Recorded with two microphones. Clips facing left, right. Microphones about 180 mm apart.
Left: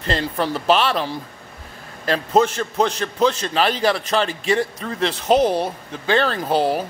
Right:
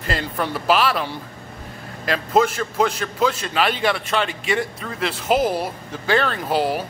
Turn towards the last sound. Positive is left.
turn(degrees=0)  # may be behind; listen again after turning